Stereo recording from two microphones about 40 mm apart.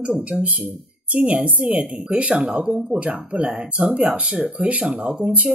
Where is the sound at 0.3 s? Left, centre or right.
Right.